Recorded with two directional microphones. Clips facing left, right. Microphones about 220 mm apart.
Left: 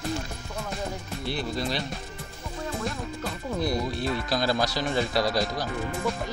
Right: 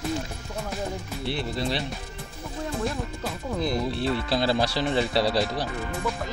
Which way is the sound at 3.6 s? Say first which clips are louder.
Right 1 dB; 25° right (ahead or behind).